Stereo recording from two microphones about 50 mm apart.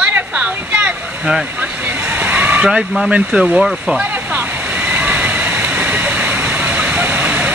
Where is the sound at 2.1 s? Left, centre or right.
Right.